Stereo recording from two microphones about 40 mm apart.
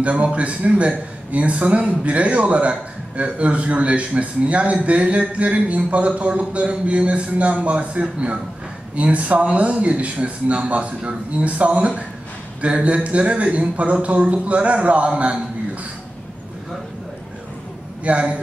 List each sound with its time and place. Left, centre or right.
0.0 s a man's voice: right
18.0 s a man's voice: right